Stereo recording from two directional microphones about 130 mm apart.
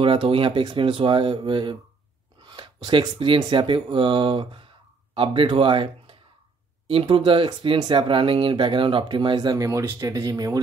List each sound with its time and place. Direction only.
0.0 s speech: 45° right (ahead or behind); by 10.6 s 25° right (ahead or behind)